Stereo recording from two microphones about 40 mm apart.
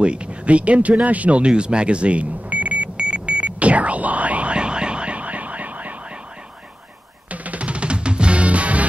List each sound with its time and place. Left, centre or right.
0.0 s speech: right
1.0 s smoke detector: right
7.2 s music: right